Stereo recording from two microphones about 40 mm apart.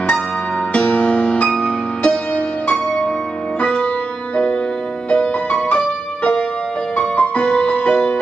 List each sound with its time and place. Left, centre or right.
0.7 s music: left
2.3 s music: left
5.1 s music: left
7.0 s music: left